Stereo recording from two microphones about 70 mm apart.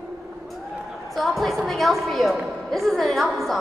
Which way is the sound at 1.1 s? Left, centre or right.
Centre.